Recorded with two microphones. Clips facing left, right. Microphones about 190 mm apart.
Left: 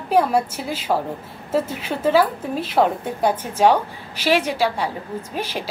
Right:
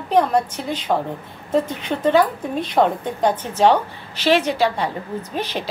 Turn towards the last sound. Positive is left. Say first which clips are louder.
# right 2 dB
turn(degrees=10)  # may be behind; listen again after turning